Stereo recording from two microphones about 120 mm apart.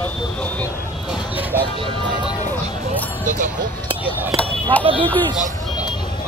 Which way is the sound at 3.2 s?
90° right.